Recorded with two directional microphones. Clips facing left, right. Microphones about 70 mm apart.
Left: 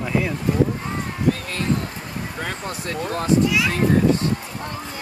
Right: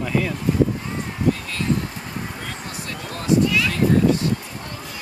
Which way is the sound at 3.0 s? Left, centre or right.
Left.